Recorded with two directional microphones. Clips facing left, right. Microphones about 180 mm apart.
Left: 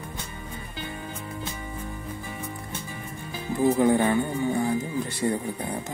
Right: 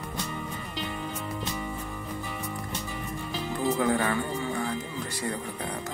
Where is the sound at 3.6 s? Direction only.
20° left (ahead or behind).